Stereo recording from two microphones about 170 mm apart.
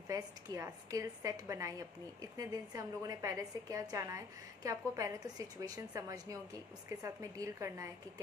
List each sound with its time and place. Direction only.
0.1 s a woman's voice: 20° right (ahead or behind)